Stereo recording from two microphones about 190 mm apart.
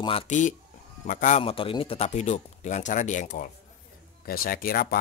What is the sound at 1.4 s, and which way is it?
Speech, 30° left (ahead or behind).